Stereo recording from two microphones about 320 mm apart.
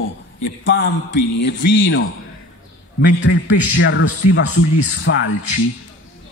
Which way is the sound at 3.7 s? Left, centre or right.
Left.